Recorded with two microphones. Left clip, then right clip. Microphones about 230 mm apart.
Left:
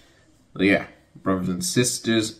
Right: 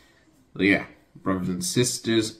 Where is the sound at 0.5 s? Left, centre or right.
Centre.